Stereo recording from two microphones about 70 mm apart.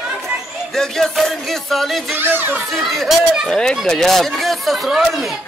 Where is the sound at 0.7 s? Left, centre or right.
Centre.